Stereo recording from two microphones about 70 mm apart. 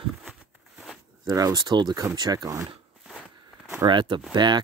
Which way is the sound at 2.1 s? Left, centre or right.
Right.